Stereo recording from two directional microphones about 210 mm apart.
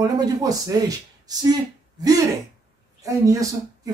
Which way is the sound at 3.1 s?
15° right (ahead or behind).